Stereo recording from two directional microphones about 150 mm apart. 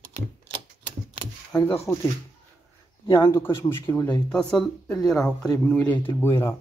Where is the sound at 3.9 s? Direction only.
10° left (ahead or behind).